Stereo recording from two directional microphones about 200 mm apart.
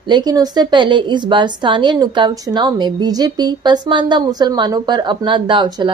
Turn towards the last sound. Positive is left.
turn(degrees=-20)  # may be behind; listen again after turning